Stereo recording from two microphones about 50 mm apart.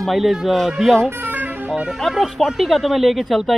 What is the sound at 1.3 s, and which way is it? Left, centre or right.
Vehicle, right.